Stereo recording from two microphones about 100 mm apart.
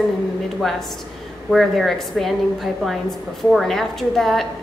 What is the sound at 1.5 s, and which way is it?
A woman's voice, centre (ahead or behind).